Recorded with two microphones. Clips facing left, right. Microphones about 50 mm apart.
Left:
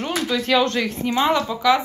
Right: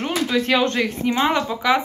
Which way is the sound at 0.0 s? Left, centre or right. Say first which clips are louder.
Right 2 dB; right.